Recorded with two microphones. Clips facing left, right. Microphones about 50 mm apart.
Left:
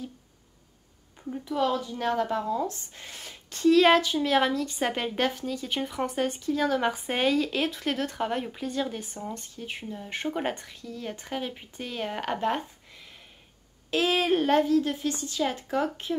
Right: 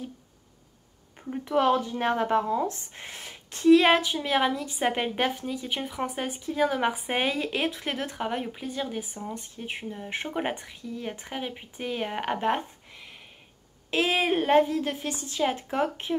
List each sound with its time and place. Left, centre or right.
1.4 s speech: right; by 9.5 s centre
9.6 s speech: right
9.9 s speech: centre
13.8 s speech: right